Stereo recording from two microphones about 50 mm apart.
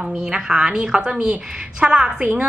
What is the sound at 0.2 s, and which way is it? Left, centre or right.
A woman's voice, centre.